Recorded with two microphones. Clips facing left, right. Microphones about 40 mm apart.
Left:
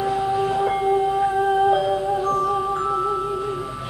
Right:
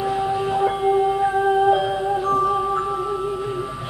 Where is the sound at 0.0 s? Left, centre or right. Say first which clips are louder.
Left 1 dB; centre.